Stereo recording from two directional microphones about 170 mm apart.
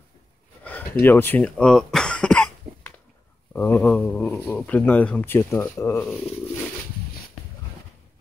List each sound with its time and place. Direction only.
0.7 s cough: 10° left (ahead or behind)
3.5 s speech: 10° left (ahead or behind)